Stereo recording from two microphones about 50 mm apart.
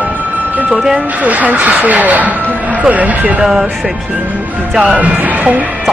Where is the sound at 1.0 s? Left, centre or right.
Right.